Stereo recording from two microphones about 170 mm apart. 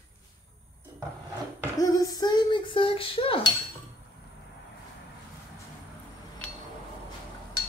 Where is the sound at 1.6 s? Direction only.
20° left (ahead or behind).